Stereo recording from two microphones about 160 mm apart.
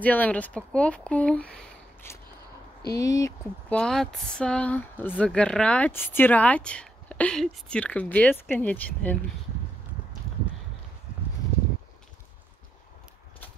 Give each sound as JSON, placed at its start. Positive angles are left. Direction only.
{"t": 0.0, "sound": "speech", "side_deg": 10}
{"t": 2.0, "sound": "a sound", "side_deg": 15}
{"t": 2.9, "sound": "speech", "side_deg": 20}
{"t": 3.7, "sound": "speech", "side_deg": 5}